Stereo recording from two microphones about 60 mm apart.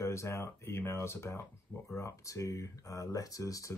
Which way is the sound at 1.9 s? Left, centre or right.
Left.